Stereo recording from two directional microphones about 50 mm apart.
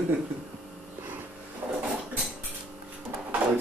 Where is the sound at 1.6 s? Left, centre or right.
Right.